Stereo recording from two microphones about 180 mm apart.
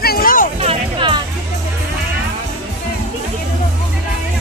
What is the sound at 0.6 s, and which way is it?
Music, 25° right (ahead or behind).